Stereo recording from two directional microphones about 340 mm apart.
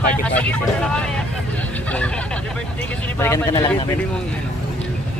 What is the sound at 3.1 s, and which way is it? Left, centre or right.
Speech, centre.